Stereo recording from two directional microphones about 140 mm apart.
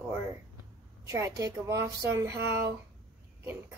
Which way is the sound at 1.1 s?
25° right (ahead or behind).